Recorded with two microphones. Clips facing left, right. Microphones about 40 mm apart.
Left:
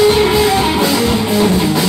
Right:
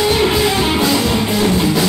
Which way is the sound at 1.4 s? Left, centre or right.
Left.